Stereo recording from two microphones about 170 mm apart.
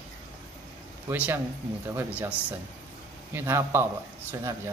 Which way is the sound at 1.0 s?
10° right (ahead or behind).